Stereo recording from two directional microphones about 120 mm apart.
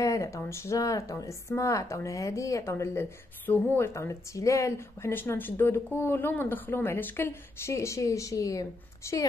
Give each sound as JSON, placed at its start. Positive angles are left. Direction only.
{"t": 0.0, "sound": "a woman's voice", "side_deg": 25}